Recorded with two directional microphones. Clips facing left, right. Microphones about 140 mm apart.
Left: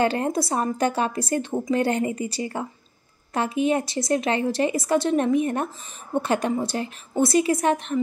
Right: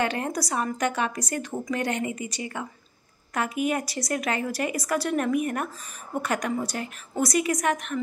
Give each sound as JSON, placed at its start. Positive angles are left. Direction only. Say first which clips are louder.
{"t": 0.0, "sound": "a woman's voice", "louder": "left 5 dB", "side_deg": 30}